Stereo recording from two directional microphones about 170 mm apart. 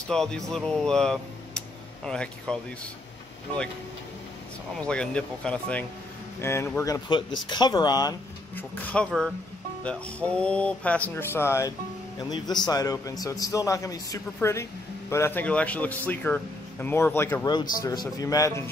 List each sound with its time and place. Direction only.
0.1 s speech: 5° left (ahead or behind)
4.7 s speech: 5° left (ahead or behind); by 8.1 s 25° left (ahead or behind)
8.5 s a man's voice: 10° left (ahead or behind)
17.5 s speech: 25° left (ahead or behind)